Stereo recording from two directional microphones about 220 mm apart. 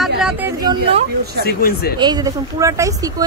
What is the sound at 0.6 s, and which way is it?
Speech, 20° right (ahead or behind).